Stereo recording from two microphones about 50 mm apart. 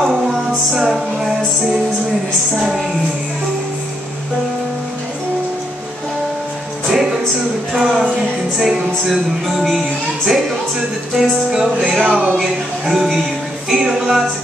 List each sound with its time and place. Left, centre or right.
0.0 s music: centre
2.5 s music: centre
6.9 s music: centre
7.7 s a sound: centre
8.5 s speech: centre
12.0 s a sound: right
12.4 s speech: centre